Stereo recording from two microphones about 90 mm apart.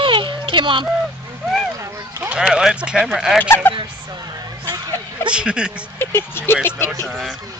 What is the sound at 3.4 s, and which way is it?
Speech, 25° left (ahead or behind).